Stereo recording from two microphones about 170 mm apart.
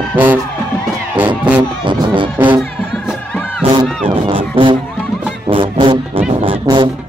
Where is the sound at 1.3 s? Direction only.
25° right (ahead or behind).